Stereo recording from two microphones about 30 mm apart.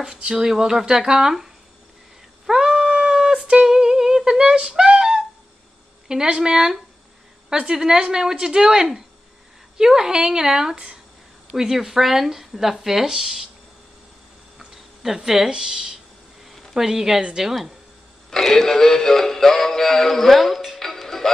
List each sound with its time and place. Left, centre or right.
0.0 s speech: right
2.4 s a sound: right
6.0 s speech: right
14.6 s a sound: right
15.5 s speech: right
18.3 s synthetic singing: centre
20.8 s music: centre